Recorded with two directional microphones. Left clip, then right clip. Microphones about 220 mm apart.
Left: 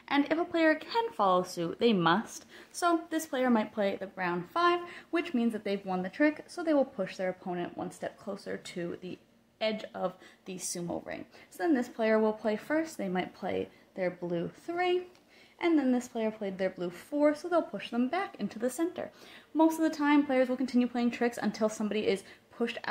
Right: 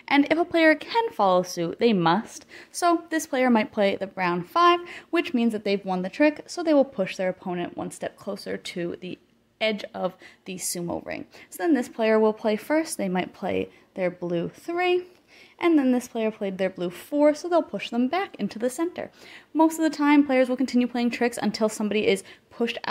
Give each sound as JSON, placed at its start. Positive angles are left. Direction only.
{"t": 0.0, "sound": "a woman's voice", "side_deg": -40}